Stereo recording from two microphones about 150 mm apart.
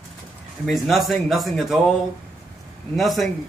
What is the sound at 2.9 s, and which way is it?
Mantra, centre (ahead or behind).